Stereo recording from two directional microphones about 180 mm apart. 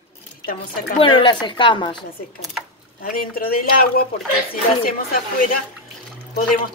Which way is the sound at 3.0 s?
55° left (ahead or behind).